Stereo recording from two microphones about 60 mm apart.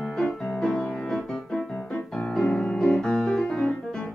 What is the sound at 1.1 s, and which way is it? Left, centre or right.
Piano, centre.